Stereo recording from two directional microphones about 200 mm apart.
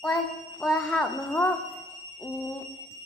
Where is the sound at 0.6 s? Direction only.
Centre (ahead or behind).